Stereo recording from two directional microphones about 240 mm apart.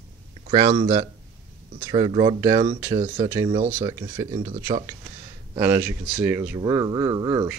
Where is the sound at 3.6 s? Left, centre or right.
Right.